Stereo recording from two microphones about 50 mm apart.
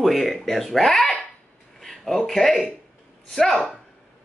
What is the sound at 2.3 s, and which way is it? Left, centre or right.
Speech, centre.